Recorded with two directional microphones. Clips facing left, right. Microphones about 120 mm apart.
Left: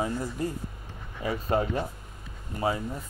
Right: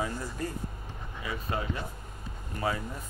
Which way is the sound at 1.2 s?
40° left (ahead or behind).